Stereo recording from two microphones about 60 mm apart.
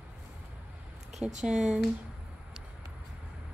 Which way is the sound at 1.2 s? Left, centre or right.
Centre.